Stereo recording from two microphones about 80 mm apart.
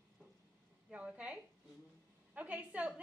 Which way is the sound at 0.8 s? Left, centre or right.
Centre.